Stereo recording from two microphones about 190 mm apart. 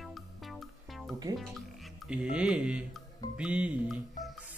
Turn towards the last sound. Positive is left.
turn(degrees=-5)  # may be behind; listen again after turning